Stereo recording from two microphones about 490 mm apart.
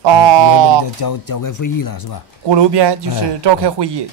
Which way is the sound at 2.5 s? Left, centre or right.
Right.